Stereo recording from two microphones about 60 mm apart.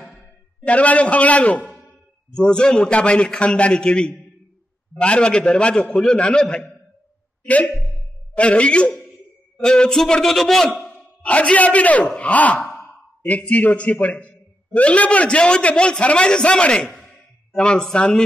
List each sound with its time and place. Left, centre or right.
0.7 s a man's voice: left
7.4 s a man's voice: left; by 10.7 s centre
11.2 s a man's voice: left